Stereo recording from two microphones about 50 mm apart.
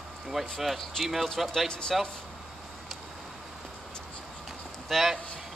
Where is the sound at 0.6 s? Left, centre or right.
Centre.